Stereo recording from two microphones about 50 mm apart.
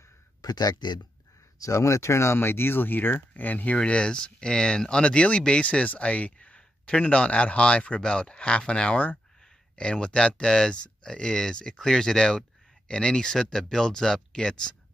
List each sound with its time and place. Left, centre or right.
1.6 s speech: left; by 14.8 s centre